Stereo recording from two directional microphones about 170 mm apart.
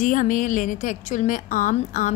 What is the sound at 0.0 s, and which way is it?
A woman's voice, 50° left (ahead or behind).